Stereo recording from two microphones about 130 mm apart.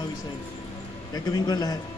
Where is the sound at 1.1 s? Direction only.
35° left (ahead or behind).